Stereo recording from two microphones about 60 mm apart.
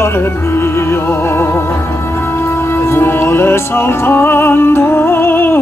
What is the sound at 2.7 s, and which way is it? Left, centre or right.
Music, left.